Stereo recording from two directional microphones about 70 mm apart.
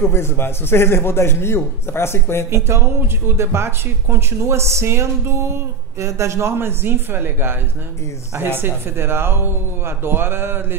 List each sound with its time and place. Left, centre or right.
0.0 s a man's voice: left
2.5 s speech: right